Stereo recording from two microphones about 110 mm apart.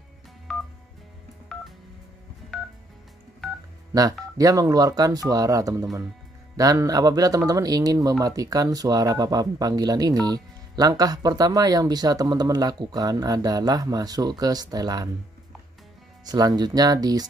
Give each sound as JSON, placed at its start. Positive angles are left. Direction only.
{"t": 0.5, "sound": "telephone dialing", "side_deg": 5}
{"t": 3.9, "sound": "speech", "side_deg": -35}
{"t": 16.3, "sound": "speech", "side_deg": -35}